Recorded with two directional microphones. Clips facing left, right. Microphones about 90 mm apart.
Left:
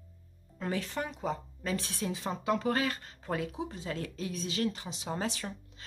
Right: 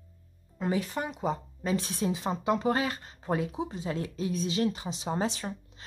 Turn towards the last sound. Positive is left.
turn(degrees=-25)  # may be behind; listen again after turning